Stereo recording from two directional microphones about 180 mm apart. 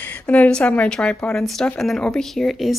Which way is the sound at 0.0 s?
10° left (ahead or behind).